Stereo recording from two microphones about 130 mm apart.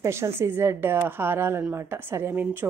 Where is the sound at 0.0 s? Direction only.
20° right (ahead or behind).